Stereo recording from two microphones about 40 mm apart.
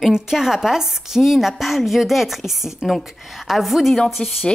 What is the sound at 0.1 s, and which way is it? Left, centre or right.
A woman's voice, centre.